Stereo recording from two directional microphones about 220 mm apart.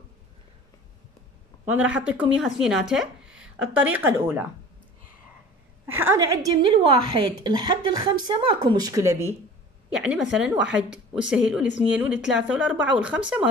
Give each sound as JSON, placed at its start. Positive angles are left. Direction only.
{"t": 1.7, "sound": "speech", "side_deg": -5}
{"t": 5.9, "sound": "a woman's voice", "side_deg": -15}